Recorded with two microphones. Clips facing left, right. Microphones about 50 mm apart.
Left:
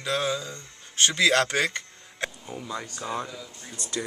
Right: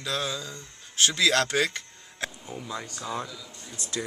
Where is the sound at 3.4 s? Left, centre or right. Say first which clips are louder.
Left 2 dB; left.